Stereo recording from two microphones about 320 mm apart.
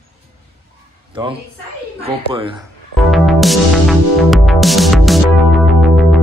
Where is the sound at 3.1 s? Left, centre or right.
Centre.